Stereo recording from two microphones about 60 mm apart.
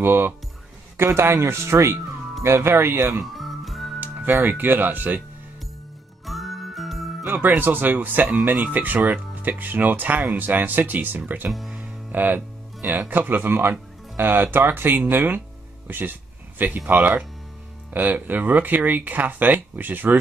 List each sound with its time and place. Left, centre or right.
0.0 s speech: right
1.3 s speech: right
3.3 s music: centre
4.4 s speech: right
6.2 s jingle: centre
7.2 s speech: right
11.8 s music: right
13.1 s speech: right